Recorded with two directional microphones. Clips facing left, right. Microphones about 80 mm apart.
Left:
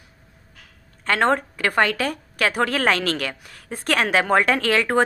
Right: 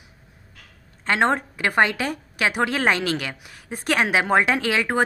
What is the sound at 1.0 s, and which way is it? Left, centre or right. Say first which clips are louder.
A woman's voice: left 1 dB; centre.